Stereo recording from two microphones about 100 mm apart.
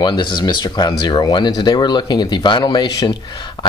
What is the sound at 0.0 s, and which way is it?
Speech, 50° left (ahead or behind).